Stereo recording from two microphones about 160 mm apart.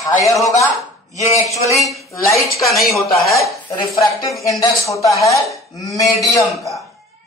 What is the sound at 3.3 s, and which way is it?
Speech, 25° left (ahead or behind).